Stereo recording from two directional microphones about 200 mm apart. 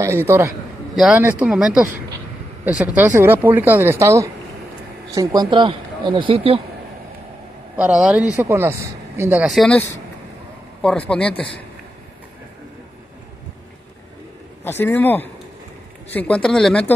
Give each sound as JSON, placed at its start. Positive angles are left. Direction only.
{"t": 0.0, "sound": "speech", "side_deg": -10}
{"t": 7.7, "sound": "speech", "side_deg": -5}
{"t": 14.6, "sound": "speech", "side_deg": 10}